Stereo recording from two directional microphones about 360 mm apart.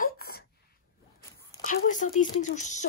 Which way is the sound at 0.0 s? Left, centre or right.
Left.